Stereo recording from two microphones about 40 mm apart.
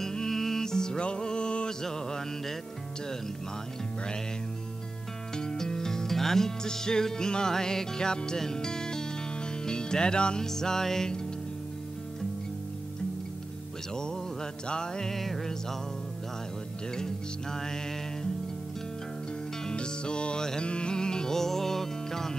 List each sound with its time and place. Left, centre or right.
0.0 s music: centre
1.8 s music: centre
5.3 s music: centre
13.9 s music: centre
15.1 s music: centre
16.9 s music: centre
19.6 s music: left